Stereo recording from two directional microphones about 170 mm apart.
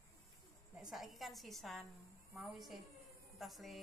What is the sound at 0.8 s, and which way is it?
A woman's voice, centre (ahead or behind).